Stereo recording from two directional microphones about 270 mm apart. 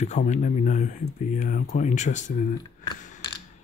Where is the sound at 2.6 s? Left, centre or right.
Centre.